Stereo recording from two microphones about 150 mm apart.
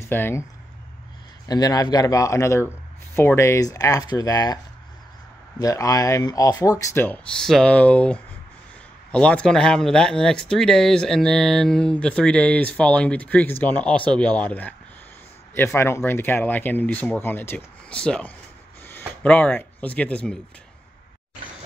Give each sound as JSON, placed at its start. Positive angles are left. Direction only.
{"t": 0.0, "sound": "speech", "side_deg": 15}
{"t": 1.5, "sound": "speech", "side_deg": 25}
{"t": 5.6, "sound": "speech", "side_deg": 25}